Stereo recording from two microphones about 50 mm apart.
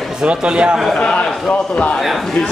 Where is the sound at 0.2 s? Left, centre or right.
Right.